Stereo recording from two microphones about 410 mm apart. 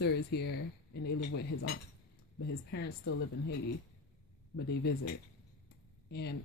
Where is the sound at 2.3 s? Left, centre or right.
Left.